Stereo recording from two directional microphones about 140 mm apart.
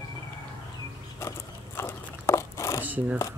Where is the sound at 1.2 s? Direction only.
15° left (ahead or behind).